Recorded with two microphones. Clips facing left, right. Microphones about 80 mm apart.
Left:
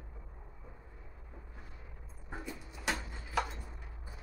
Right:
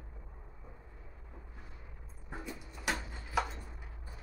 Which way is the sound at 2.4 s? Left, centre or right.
Centre.